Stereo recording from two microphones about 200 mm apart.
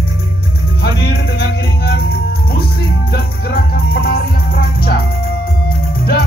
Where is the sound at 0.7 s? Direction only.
55° left (ahead or behind).